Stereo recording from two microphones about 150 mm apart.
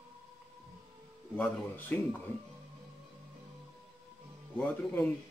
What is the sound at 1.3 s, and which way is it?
Speech, 10° left (ahead or behind).